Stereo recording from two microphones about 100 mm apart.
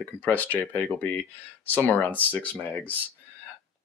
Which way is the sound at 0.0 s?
20° left (ahead or behind).